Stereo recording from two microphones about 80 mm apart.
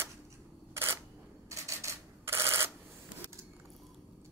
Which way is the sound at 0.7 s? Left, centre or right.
Right.